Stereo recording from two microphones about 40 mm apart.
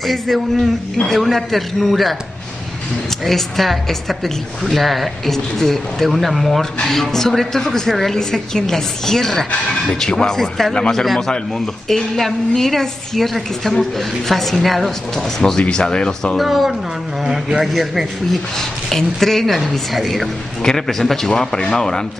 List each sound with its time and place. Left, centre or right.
0.0 s a woman's voice: centre
0.9 s a woman's voice: centre
1.2 s a woman's voice: centre
3.3 s a woman's voice: centre
15.6 s speech: left
16.3 s a woman's voice: centre
18.3 s a woman's voice: centre